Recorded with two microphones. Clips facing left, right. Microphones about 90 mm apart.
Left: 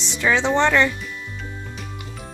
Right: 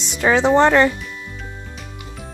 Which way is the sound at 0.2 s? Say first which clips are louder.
Right 5 dB; 40° right (ahead or behind).